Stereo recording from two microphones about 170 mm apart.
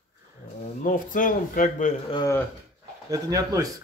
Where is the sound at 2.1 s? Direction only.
25° left (ahead or behind).